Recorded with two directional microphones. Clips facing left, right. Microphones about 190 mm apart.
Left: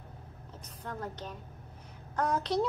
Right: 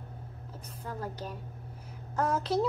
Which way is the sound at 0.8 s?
5° right (ahead or behind).